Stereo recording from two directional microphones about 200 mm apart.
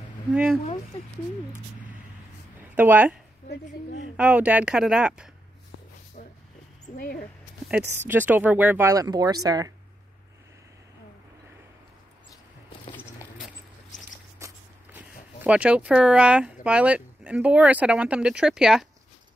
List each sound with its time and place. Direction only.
0.3 s speech: 5° right (ahead or behind)
2.7 s a woman's voice: 10° right (ahead or behind)
3.4 s a woman's voice: 40° left (ahead or behind)
4.2 s speech: 5° right (ahead or behind)
6.2 s a sound: 45° left (ahead or behind)
8.1 s speech: 10° right (ahead or behind)
14.4 s a sound: 10° right (ahead or behind)
16.6 s speech: 5° right (ahead or behind)